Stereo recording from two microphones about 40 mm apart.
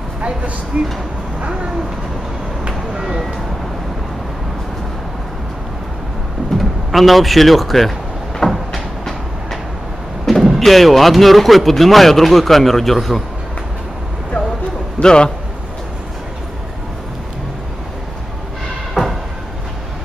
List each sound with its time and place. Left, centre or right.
0.7 s speech: right
2.9 s vehicle: centre
6.5 s speech: centre
8.5 s cupboard open or close: centre
10.4 s speech: centre
15.0 s a man's voice: left
19.0 s a sound: centre